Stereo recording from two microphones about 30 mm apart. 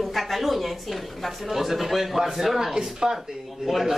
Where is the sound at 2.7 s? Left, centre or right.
Centre.